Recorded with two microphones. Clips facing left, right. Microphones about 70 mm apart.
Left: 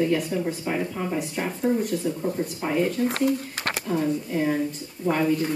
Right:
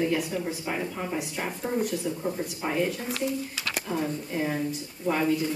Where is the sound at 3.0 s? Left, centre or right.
Left.